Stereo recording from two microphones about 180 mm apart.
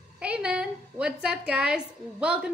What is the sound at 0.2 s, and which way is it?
A woman's voice, 5° right (ahead or behind).